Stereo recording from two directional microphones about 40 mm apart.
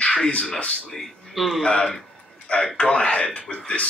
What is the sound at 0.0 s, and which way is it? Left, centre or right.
Speech, left.